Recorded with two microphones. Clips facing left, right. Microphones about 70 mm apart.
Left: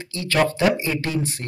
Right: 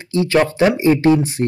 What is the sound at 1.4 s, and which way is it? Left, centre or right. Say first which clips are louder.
Speech: right 15 dB; right.